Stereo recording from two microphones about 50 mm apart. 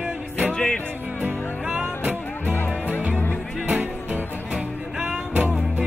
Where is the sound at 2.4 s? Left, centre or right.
Left.